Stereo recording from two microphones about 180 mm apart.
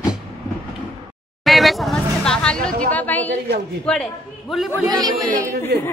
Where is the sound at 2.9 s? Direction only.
10° left (ahead or behind).